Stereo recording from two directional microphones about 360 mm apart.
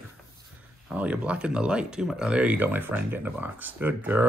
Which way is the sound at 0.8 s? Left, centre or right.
Centre.